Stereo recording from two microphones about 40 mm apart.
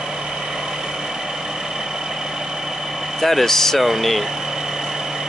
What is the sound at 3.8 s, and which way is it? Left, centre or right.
Speech, centre.